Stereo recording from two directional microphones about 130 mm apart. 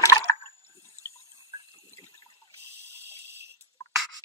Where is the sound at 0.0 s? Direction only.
25° left (ahead or behind).